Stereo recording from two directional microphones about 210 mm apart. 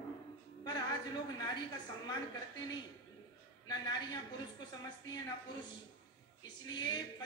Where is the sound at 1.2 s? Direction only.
20° left (ahead or behind).